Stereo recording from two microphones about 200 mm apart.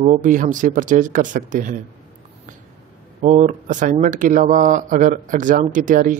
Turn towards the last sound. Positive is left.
turn(degrees=-40)  # may be behind; listen again after turning